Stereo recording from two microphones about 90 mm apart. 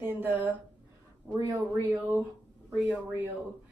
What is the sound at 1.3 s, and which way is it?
Speech, 40° right (ahead or behind).